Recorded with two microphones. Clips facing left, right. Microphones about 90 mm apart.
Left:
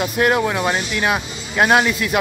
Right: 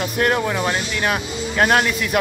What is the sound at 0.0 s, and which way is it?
Speech, 5° left (ahead or behind).